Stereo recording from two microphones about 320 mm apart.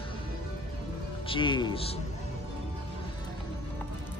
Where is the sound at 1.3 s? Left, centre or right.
Centre.